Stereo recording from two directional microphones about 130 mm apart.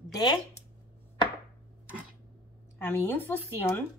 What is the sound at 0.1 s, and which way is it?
Speech, 30° left (ahead or behind).